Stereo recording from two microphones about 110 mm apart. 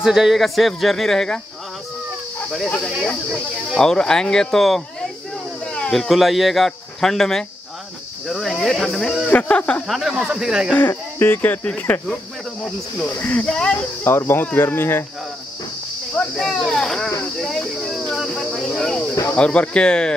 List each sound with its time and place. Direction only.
0.0 s speech: 5° right (ahead or behind)
2.8 s speech: centre (ahead or behind)
9.3 s speech: 15° left (ahead or behind)
9.8 s speech: centre (ahead or behind)
10.7 s speech: 20° left (ahead or behind)
13.1 s speech: 15° left (ahead or behind)
14.0 s speech: 20° left (ahead or behind)
16.3 s speech: 5° left (ahead or behind)
17.4 s a sound: centre (ahead or behind)
18.1 s cricket: centre (ahead or behind)
19.3 s speech: 10° left (ahead or behind)